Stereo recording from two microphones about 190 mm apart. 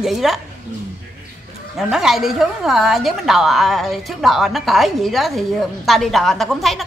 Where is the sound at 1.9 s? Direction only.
Centre (ahead or behind).